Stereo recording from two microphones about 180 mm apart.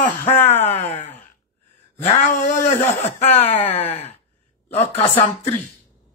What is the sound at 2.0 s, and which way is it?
Speech, 45° left (ahead or behind).